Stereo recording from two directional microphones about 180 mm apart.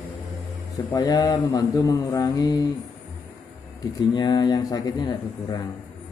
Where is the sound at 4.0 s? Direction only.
20° left (ahead or behind).